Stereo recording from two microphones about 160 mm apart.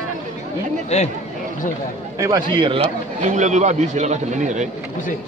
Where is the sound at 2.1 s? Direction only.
20° right (ahead or behind).